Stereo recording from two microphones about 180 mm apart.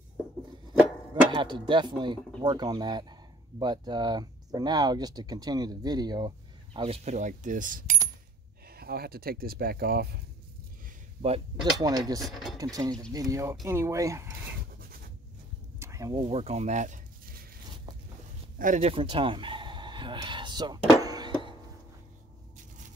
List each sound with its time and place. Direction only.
1.3 s speech: 25° right (ahead or behind); by 8.0 s 45° right (ahead or behind)
8.6 s speech: 60° right (ahead or behind)
11.7 s speech: 20° right (ahead or behind)
12.2 s speech: centre (ahead or behind)
12.7 s speech: 20° right (ahead or behind)
15.8 s a sound: 15° right (ahead or behind); by 17.5 s 50° right (ahead or behind)
18.6 s speech: 40° right (ahead or behind); by 20.8 s 25° right (ahead or behind)
21.0 s a sound: 20° right (ahead or behind)